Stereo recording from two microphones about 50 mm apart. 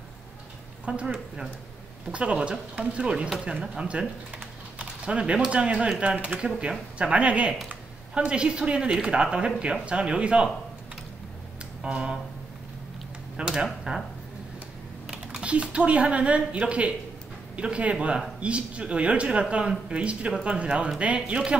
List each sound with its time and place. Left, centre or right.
0.8 s speech: right
2.1 s speech: right
4.7 s a sound: right
5.5 s speech: right
11.8 s speech: centre
13.4 s speech: right
15.0 s speech: right